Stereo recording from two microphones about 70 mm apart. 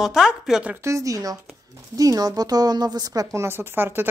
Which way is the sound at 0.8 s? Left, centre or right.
Right.